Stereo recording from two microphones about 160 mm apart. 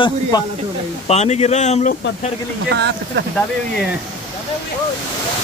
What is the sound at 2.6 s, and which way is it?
Speech, 90° right.